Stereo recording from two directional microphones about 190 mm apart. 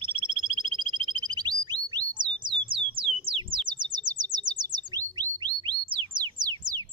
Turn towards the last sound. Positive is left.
turn(degrees=-25)  # may be behind; listen again after turning